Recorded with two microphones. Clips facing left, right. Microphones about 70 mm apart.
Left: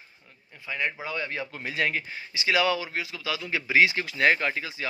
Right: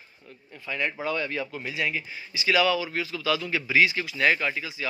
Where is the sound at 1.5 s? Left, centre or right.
Left.